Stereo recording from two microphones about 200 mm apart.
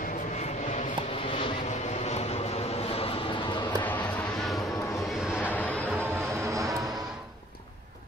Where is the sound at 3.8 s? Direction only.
10° left (ahead or behind).